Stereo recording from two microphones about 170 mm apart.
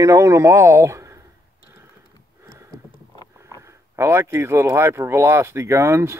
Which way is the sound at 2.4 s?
15° right (ahead or behind).